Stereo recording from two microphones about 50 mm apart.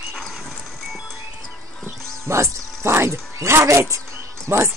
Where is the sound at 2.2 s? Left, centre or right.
Right.